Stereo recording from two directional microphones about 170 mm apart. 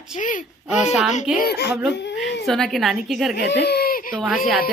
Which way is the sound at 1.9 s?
90° left.